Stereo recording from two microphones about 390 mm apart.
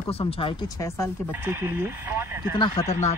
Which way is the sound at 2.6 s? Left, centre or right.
Centre.